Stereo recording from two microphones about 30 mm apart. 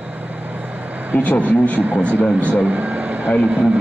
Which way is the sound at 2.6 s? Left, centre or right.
Right.